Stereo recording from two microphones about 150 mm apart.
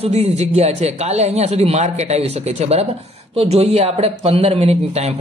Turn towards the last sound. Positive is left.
turn(degrees=-45)  # may be behind; listen again after turning